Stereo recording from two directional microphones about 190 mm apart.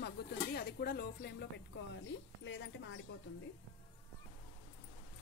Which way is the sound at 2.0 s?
75° left (ahead or behind).